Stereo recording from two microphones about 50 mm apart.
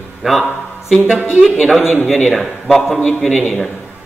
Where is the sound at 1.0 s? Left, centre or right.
Right.